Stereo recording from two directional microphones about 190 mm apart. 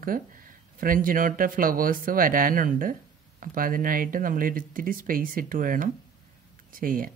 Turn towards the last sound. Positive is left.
turn(degrees=-45)  # may be behind; listen again after turning